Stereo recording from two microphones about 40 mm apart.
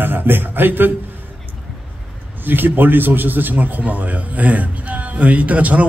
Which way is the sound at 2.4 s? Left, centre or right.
Right.